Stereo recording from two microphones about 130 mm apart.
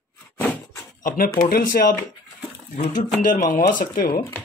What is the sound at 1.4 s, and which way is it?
Speech, 90° left.